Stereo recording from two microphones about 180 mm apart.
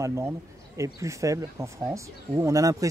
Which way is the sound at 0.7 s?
15° right (ahead or behind).